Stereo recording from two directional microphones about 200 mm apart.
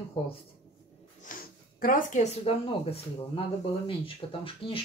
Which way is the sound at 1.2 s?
45° left (ahead or behind).